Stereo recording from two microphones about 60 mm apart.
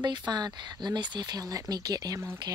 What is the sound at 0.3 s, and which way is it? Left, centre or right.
Speech, right.